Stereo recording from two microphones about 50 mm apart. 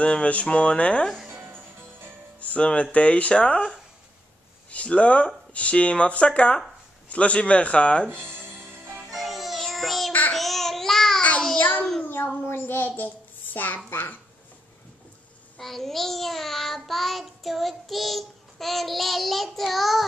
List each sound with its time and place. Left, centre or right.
0.0 s speech: left
2.4 s speech: left
8.4 s music: right
9.1 s music: centre
9.7 s child singing: centre
10.3 s babbling: centre
11.5 s a sound: left
12.4 s a sound: left
13.8 s a child's voice: left
15.5 s child singing: centre